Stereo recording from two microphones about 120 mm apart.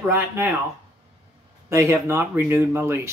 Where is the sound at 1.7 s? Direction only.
25° right (ahead or behind).